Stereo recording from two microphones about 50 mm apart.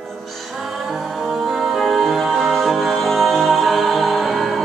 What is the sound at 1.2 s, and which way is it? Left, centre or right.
Music, centre.